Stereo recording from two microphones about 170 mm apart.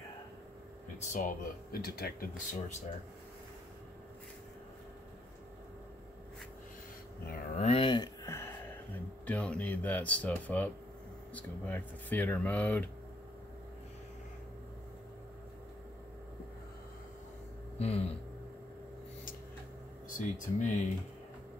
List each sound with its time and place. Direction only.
0.9 s speech: 45° left (ahead or behind)
1.7 s speech: 65° left (ahead or behind)
7.2 s cattle: 60° left (ahead or behind)
7.6 s a sound: 35° left (ahead or behind); by 8.7 s 15° left (ahead or behind)
9.2 s speech: 10° left (ahead or behind)
17.7 s speech: 35° left (ahead or behind)
20.1 s speech: 45° left (ahead or behind)